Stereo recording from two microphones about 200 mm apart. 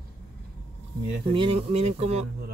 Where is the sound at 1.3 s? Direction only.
30° right (ahead or behind).